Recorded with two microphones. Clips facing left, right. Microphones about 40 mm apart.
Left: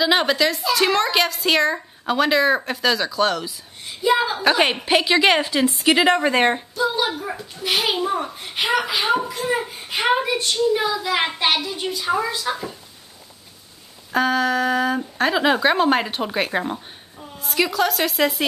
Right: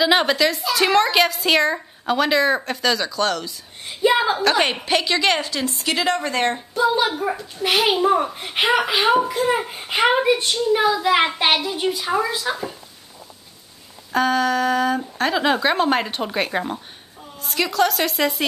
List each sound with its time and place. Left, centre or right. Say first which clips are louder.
0.0 s a woman's voice: right 1 dB; centre
4.0 s a sound: right 2 dB; right
4.4 s a woman's voice: left 1 dB; centre
6.7 s a child's voice: right 3 dB; right
9.8 s a child's voice: right 4 dB; right
10.0 s a child's voice: right 2 dB; right
14.1 s a woman's voice: even; centre